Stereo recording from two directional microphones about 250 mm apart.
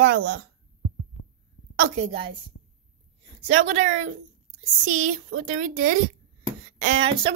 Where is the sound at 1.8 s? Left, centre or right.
Right.